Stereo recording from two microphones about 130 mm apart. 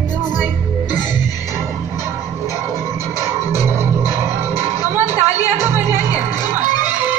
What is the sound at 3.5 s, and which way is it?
Music, 20° right (ahead or behind).